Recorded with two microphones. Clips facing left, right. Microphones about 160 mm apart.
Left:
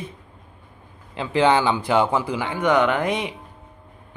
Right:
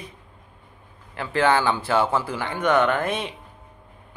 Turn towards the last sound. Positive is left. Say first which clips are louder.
# left 2 dB
turn(degrees=15)  # may be behind; listen again after turning